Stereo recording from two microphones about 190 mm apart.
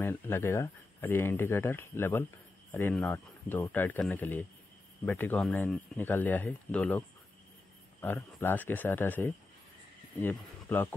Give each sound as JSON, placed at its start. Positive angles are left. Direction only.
{"t": 0.0, "sound": "speech", "side_deg": 10}